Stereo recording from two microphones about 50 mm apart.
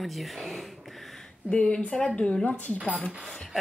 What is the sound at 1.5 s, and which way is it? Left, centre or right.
Speech, centre.